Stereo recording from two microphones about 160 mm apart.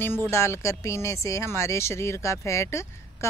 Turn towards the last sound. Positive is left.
turn(degrees=15)  # may be behind; listen again after turning